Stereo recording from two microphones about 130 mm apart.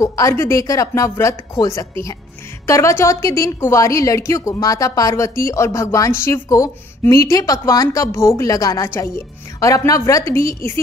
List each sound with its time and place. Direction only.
0.0 s a woman's voice: 25° left (ahead or behind)